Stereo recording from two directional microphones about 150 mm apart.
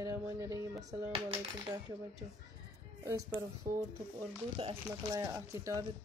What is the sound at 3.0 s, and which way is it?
Speech, 20° right (ahead or behind).